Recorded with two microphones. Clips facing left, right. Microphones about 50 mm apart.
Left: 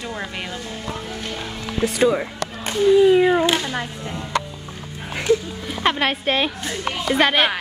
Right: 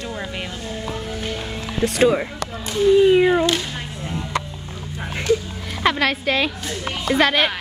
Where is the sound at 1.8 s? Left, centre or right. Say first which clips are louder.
Right 1 dB; centre.